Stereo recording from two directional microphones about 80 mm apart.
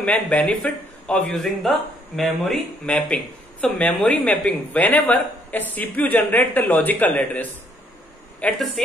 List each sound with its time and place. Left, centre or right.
0.0 s a man's voice: centre
3.6 s a man's voice: centre
8.8 s speech: centre